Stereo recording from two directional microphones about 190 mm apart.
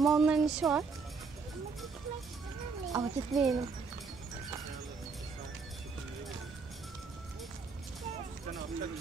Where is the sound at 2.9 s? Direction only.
20° right (ahead or behind).